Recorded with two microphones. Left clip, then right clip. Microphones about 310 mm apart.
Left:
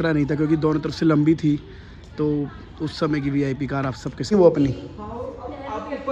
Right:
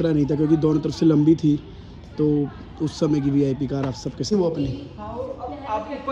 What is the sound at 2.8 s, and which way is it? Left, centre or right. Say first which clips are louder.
Speech: right 1 dB; centre.